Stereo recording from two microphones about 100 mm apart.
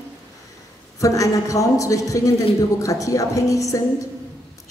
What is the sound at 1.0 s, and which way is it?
A woman's voice, 35° left (ahead or behind).